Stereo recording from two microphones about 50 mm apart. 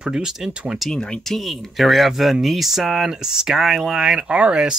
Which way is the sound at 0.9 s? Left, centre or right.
Centre.